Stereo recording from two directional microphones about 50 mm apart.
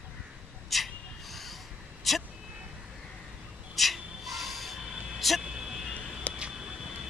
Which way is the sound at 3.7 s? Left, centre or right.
Centre.